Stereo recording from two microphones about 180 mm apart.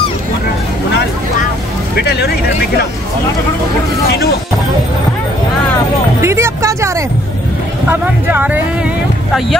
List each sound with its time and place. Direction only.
2.0 s speech: 65° left (ahead or behind)
6.2 s a sound: 15° right (ahead or behind)
7.9 s speech: 10° right (ahead or behind)